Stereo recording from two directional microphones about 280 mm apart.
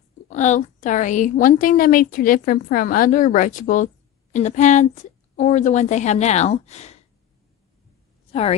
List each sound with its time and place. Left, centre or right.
0.3 s a woman's voice: left
8.3 s a woman's voice: left